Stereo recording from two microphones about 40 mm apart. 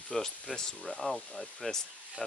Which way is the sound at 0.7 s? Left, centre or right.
Left.